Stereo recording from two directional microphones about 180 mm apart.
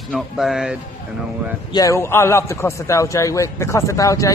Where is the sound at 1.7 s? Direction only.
20° left (ahead or behind).